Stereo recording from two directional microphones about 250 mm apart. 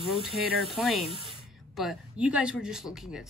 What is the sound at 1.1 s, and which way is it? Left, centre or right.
Spray, right.